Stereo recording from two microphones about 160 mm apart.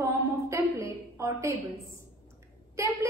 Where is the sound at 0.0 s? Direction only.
20° right (ahead or behind).